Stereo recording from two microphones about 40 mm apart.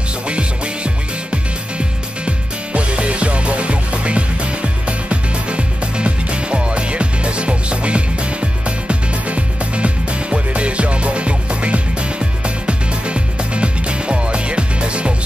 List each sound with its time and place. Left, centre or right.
0.3 s music: right